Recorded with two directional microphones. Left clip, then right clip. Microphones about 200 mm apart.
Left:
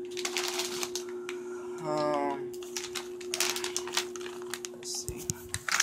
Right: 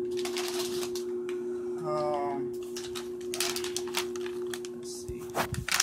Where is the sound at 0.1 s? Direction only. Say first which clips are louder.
Right 2 dB; 35° left (ahead or behind).